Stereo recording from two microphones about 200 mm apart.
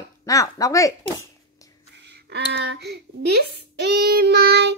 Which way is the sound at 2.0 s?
60° right (ahead or behind).